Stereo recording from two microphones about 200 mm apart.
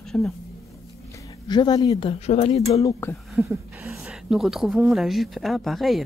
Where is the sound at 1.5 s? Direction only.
20° left (ahead or behind).